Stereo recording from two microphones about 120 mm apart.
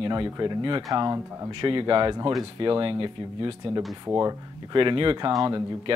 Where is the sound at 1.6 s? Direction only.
45° right (ahead or behind).